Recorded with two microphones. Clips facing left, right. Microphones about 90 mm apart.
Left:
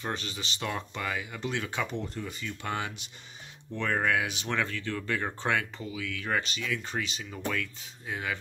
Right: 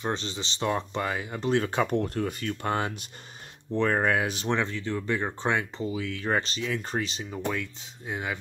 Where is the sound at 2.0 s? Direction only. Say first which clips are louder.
Right 8 dB; 55° right (ahead or behind).